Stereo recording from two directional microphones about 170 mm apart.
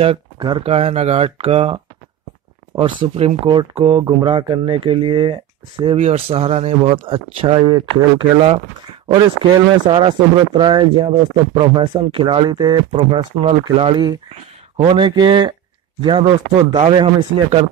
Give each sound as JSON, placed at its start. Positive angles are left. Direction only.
{"t": 0.0, "sound": "speech", "side_deg": -30}
{"t": 9.8, "sound": "speech", "side_deg": -30}